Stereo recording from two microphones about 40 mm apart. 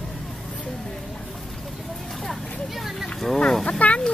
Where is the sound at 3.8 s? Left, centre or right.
Left.